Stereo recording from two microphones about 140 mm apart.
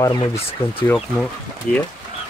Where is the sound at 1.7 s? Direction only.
10° left (ahead or behind).